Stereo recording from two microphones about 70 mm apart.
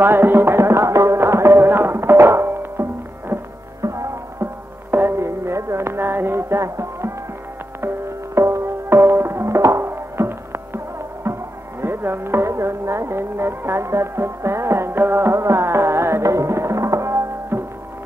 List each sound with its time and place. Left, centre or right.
0.0 s music: right
3.8 s music: right
8.4 s music: right